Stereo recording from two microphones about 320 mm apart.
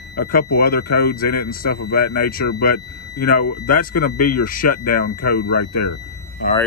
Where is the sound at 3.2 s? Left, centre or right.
Left.